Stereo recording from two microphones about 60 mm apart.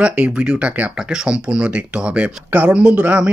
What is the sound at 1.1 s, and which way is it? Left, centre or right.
Speech, centre.